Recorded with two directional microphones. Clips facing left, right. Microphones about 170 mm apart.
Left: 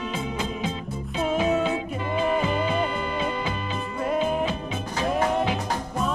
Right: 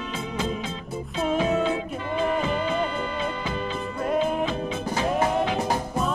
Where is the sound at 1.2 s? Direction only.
10° left (ahead or behind).